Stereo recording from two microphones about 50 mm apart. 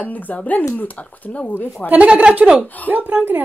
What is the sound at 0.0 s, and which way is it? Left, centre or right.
Speech, left.